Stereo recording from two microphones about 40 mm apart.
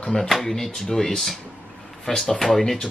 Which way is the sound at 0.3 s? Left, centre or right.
Centre.